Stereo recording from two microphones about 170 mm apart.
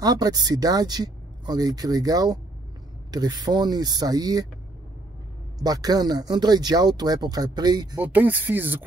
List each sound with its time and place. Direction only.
0.0 s speech: 20° right (ahead or behind)
5.6 s speech: 25° right (ahead or behind)
8.0 s speech: 10° right (ahead or behind)